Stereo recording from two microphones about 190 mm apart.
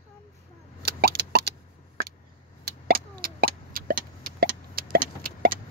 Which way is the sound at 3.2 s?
50° right (ahead or behind).